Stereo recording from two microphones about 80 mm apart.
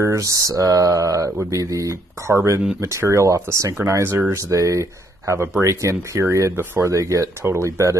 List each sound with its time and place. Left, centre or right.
0.0 s speech: right